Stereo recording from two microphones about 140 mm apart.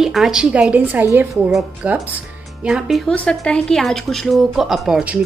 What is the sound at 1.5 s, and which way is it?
A woman's voice, centre (ahead or behind).